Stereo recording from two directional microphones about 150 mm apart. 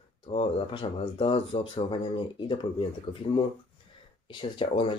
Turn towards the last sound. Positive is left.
turn(degrees=35)  # may be behind; listen again after turning